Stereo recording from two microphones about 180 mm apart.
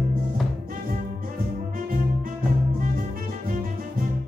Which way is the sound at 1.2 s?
50° right (ahead or behind).